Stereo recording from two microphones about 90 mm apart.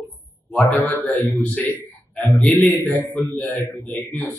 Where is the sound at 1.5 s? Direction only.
20° left (ahead or behind).